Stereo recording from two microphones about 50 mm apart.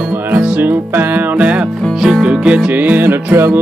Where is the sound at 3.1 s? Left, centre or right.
Right.